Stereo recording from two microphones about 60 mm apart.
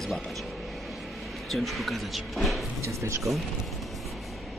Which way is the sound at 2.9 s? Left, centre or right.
Right.